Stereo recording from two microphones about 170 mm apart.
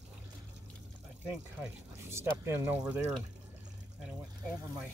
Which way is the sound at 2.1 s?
15° right (ahead or behind).